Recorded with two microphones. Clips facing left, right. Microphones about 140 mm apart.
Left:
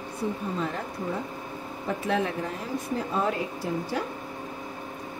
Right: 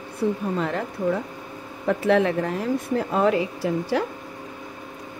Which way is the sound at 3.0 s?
85° right.